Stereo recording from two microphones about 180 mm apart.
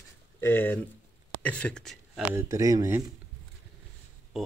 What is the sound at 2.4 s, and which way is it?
Speech, 15° right (ahead or behind).